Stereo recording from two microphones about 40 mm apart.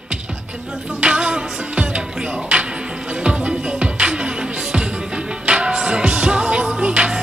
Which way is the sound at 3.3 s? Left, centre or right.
Right.